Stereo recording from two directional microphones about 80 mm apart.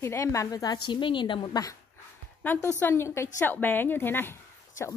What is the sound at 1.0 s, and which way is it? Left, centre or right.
Speech, left.